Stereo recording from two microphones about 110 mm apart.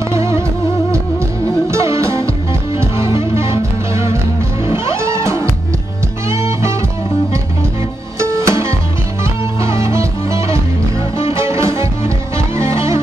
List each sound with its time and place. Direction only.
0.1 s music: 25° right (ahead or behind)
1.7 s music: 25° right (ahead or behind)
8.2 s music: 25° right (ahead or behind)